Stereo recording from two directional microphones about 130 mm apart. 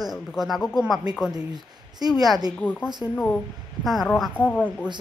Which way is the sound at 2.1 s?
Centre (ahead or behind).